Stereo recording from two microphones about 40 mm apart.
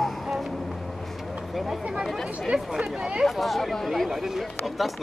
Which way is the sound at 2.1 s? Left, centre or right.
Centre.